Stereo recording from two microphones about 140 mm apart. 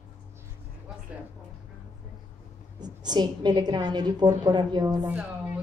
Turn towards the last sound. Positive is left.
turn(degrees=-10)  # may be behind; listen again after turning